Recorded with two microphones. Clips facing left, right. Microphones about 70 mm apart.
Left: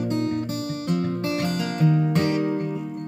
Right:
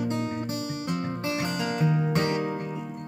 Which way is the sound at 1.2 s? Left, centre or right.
Centre.